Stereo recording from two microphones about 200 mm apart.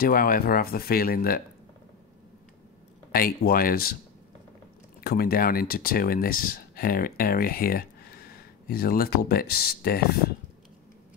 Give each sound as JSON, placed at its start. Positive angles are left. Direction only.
{"t": 0.0, "sound": "speech", "side_deg": 45}
{"t": 3.1, "sound": "speech", "side_deg": 50}
{"t": 5.0, "sound": "speech", "side_deg": 50}